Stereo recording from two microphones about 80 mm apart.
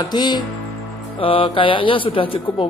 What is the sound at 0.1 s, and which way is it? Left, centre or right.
Speech, left.